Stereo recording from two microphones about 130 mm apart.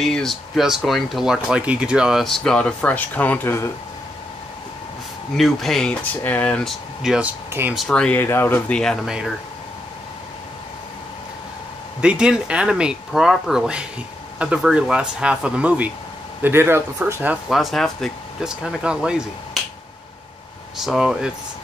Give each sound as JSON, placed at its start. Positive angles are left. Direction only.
{"t": 0.0, "sound": "speech", "side_deg": 5}
{"t": 5.4, "sound": "speech", "side_deg": 0}
{"t": 7.7, "sound": "speech", "side_deg": 5}
{"t": 12.0, "sound": "speech", "side_deg": -5}
{"t": 17.5, "sound": "speech", "side_deg": 0}
{"t": 20.7, "sound": "speech", "side_deg": -5}